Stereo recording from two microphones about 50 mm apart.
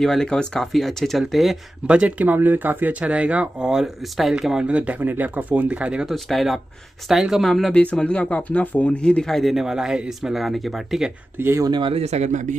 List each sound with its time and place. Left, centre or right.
0.0 s speech: centre
0.7 s speech: centre
1.9 s speech: right
3.0 s speech: right
3.7 s speech: centre
5.0 s speech: right
6.0 s speech: centre
7.4 s speech: centre
7.7 s speech: left
9.2 s speech: centre
9.6 s speech: centre
11.4 s speech: right